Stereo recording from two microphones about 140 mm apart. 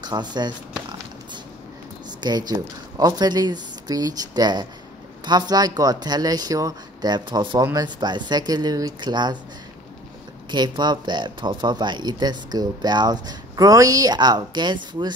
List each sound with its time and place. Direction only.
0.0 s speech: 30° right (ahead or behind)
2.0 s a sound: 30° right (ahead or behind)
3.0 s speech: 30° right (ahead or behind)
10.5 s speech: 30° right (ahead or behind)